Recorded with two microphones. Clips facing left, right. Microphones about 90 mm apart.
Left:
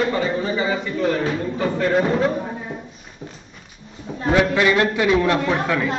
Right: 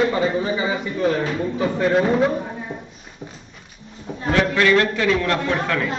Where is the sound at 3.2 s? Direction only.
Centre (ahead or behind).